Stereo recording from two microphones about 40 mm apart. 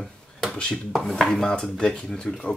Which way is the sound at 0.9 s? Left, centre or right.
Centre.